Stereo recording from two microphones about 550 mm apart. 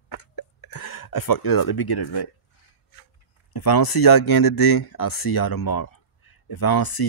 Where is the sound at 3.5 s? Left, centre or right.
Left.